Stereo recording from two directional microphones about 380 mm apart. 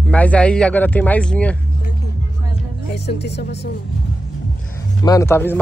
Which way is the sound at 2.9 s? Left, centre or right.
Left.